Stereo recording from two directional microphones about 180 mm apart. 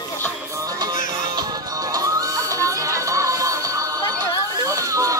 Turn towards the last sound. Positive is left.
turn(degrees=-15)  # may be behind; listen again after turning